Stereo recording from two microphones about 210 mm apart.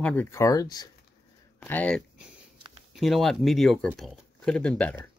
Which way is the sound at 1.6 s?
5° left (ahead or behind).